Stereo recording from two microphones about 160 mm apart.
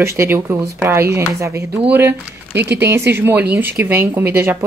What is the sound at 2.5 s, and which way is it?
Speech, 90° right.